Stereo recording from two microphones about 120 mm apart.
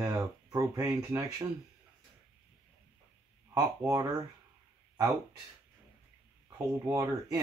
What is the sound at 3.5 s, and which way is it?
Speech, 30° right (ahead or behind).